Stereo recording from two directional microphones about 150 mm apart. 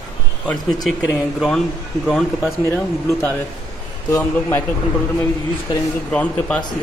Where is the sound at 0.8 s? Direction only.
Centre (ahead or behind).